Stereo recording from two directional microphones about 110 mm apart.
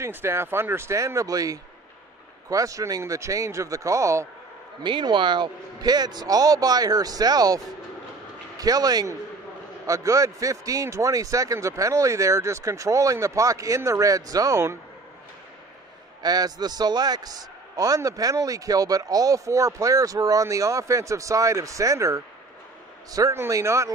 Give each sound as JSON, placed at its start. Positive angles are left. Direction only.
{"t": 0.0, "sound": "a man's voice", "side_deg": -20}
{"t": 4.8, "sound": "a man's voice", "side_deg": -45}
{"t": 16.2, "sound": "a man's voice", "side_deg": -35}